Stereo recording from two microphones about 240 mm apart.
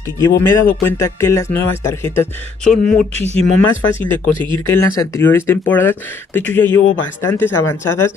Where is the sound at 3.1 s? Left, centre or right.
Right.